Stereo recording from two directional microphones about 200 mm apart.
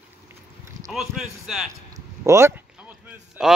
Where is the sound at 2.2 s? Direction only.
15° right (ahead or behind).